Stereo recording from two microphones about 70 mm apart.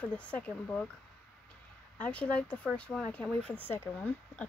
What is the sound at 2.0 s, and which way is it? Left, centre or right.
Speech, centre.